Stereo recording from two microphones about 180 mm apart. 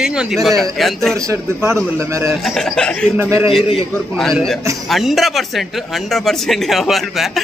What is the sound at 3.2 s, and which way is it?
Speech, 15° right (ahead or behind).